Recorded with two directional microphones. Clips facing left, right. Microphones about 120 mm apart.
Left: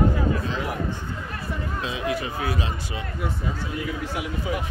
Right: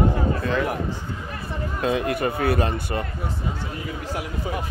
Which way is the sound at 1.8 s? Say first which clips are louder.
Right 7 dB; 55° right (ahead or behind).